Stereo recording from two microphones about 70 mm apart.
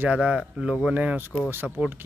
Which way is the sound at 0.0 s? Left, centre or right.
Centre.